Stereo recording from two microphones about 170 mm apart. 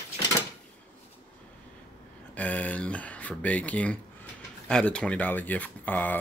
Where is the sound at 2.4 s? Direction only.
10° left (ahead or behind).